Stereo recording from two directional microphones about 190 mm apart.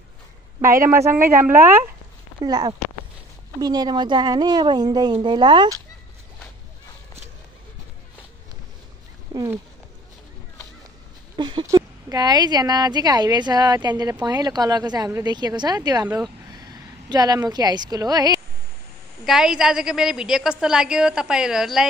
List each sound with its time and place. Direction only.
0.6 s a woman's voice: 15° right (ahead or behind)
2.4 s a woman's voice: 20° right (ahead or behind)
9.3 s wild animals: 15° right (ahead or behind)
11.3 s a woman's voice: 25° right (ahead or behind)
17.1 s a woman's voice: 20° right (ahead or behind)
19.2 s a woman's voice: 5° right (ahead or behind)